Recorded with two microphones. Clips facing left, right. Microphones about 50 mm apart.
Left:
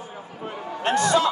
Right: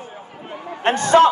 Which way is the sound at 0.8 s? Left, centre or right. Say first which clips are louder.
Right 6 dB; right.